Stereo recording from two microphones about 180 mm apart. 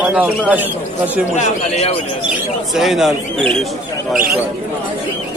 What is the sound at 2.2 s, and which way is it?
Speech, centre (ahead or behind).